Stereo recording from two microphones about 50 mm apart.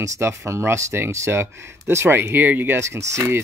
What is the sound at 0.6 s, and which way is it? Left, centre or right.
Speech, right.